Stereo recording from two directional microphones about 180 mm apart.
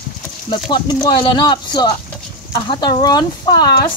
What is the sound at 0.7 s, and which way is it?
Speech, 25° left (ahead or behind).